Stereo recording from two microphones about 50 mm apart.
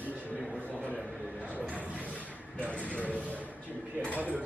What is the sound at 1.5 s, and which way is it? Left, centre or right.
Speech, right.